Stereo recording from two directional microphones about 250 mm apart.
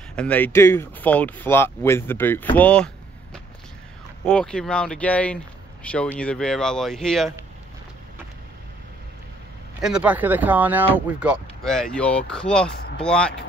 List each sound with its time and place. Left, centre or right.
0.1 s speech: centre
4.2 s speech: centre
9.8 s speech: centre